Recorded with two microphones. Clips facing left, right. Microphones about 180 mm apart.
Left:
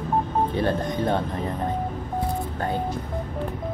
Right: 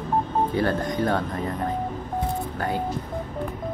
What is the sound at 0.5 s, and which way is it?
Speech, 25° left (ahead or behind).